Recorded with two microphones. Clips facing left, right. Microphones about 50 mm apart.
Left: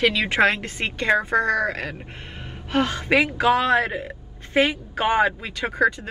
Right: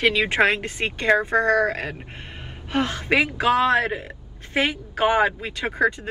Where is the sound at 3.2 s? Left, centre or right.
Left.